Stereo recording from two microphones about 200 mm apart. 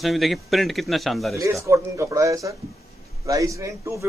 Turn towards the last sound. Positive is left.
turn(degrees=-15)  # may be behind; listen again after turning